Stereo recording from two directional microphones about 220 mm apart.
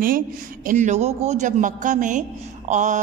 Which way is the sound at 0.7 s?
35° right (ahead or behind).